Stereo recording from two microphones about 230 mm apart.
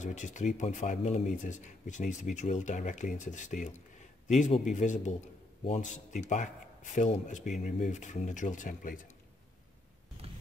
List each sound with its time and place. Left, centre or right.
0.0 s speech: left